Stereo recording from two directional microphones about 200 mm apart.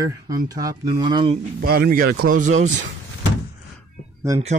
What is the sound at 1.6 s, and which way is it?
Speech, 50° right (ahead or behind).